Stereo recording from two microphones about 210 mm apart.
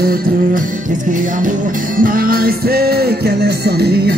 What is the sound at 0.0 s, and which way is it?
Music, 45° right (ahead or behind).